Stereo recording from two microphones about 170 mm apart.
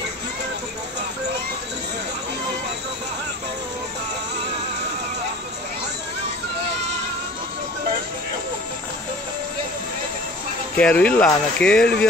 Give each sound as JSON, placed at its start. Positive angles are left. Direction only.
{"t": 10.8, "sound": "speech", "side_deg": 5}